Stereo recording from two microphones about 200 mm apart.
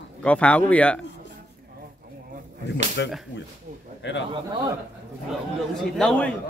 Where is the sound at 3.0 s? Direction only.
60° left (ahead or behind).